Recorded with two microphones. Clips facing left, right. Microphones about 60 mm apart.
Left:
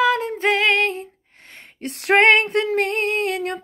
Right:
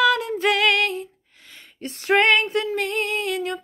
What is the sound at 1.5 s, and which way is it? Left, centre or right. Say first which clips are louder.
Female singing: left 3 dB; left.